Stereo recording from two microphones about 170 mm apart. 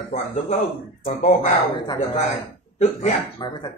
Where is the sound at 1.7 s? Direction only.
25° left (ahead or behind).